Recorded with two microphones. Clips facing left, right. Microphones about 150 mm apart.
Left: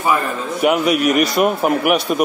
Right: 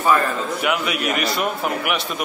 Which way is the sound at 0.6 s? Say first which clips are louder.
Left 11 dB; 45° left (ahead or behind).